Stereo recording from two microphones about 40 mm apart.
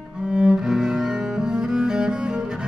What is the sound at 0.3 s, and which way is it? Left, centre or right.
Cello, right.